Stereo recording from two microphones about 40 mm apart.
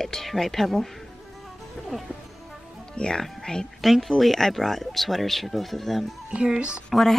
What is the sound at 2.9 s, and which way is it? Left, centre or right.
Speech, left.